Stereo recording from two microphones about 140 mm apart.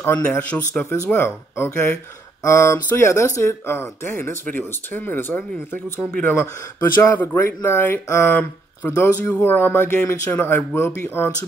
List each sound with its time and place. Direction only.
0.0 s speech: 15° left (ahead or behind)